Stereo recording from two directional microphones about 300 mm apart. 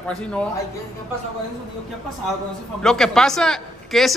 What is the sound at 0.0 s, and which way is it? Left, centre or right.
Speech, centre.